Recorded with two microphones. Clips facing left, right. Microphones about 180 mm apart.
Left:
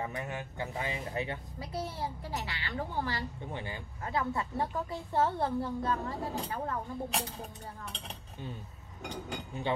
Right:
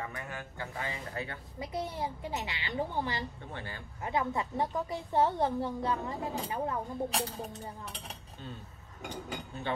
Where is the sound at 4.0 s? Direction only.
20° right (ahead or behind).